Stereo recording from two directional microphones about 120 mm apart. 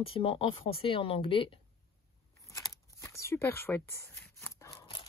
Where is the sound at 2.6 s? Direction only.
25° left (ahead or behind).